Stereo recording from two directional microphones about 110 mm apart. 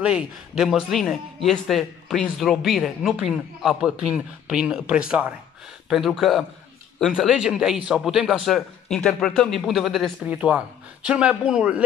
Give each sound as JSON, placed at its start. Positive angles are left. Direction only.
{"t": 0.0, "sound": "a man's voice", "side_deg": -5}
{"t": 10.2, "sound": "speech", "side_deg": -10}